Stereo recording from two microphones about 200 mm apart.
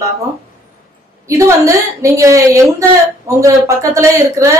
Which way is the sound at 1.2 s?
15° right (ahead or behind).